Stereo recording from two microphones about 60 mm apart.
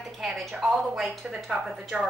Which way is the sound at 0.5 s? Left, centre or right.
Centre.